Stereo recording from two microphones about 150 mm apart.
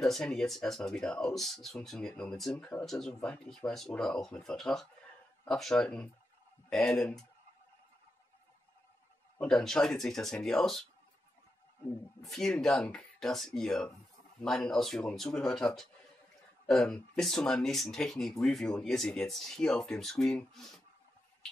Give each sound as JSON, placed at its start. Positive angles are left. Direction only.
{"t": 0.0, "sound": "speech", "side_deg": 5}
{"t": 9.4, "sound": "speech", "side_deg": 5}
{"t": 12.2, "sound": "speech", "side_deg": 5}